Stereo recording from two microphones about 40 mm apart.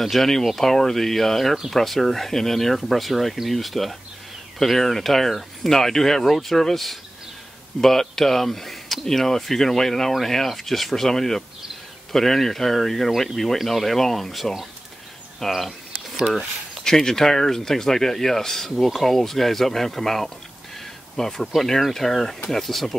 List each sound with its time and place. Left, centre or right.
0.0 s speech: centre